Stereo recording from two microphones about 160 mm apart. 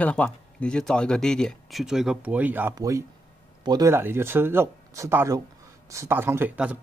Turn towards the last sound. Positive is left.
turn(degrees=-10)  # may be behind; listen again after turning